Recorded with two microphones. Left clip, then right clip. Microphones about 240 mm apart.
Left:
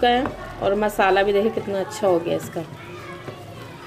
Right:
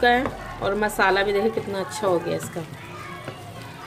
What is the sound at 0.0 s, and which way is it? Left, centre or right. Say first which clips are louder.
Speech: even; centre.